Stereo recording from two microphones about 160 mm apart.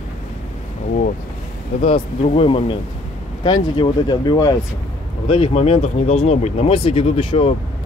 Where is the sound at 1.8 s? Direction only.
40° left (ahead or behind).